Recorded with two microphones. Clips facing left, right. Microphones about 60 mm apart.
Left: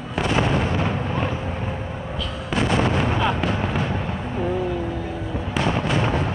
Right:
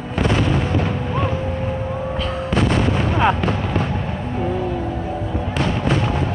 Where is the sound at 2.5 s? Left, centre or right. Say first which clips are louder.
Right 1 dB; right.